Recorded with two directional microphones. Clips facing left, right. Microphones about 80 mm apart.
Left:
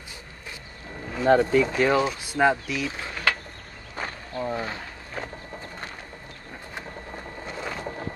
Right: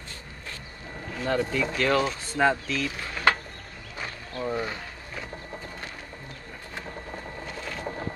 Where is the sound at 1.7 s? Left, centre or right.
Centre.